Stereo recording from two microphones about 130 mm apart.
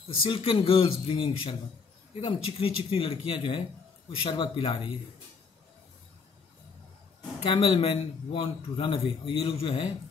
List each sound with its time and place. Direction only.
0.3 s speech: 45° left (ahead or behind)
7.4 s speech: 45° left (ahead or behind)